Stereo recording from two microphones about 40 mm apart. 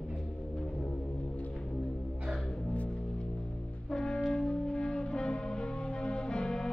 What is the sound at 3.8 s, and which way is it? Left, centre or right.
Brass instrument, centre.